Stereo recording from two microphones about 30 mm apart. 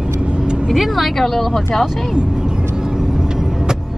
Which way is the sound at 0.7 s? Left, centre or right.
Centre.